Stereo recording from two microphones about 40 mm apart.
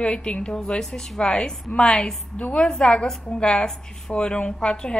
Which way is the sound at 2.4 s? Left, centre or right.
Left.